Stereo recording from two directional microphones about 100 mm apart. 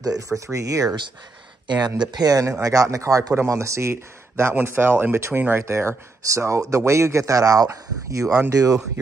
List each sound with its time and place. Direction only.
0.5 s speech: 35° right (ahead or behind)
1.7 s speech: 45° right (ahead or behind)